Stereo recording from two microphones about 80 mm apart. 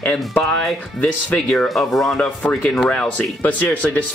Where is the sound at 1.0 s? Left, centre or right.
Centre.